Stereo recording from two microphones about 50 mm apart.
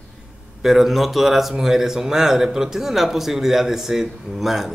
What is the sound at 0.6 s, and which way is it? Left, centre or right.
Speech, centre.